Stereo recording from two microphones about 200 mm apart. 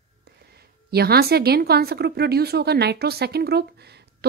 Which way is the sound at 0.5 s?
50° right (ahead or behind).